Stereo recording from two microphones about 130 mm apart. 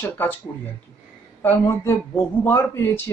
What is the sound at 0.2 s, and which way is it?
Speech, 15° left (ahead or behind).